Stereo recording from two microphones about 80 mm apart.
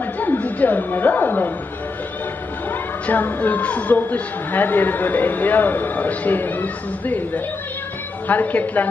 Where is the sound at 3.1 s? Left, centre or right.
Left.